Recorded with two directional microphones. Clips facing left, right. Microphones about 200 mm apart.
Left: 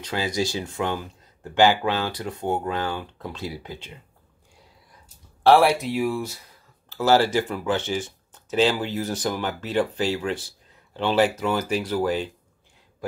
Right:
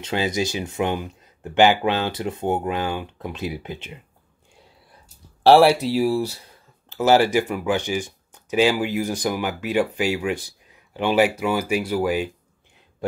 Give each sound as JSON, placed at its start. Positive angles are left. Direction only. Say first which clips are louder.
{"t": 0.0, "sound": "speech", "louder": "right 2 dB", "side_deg": -20}
{"t": 5.4, "sound": "speech", "louder": "right 3 dB", "side_deg": -30}
{"t": 6.9, "sound": "speech", "louder": "right 2 dB", "side_deg": -15}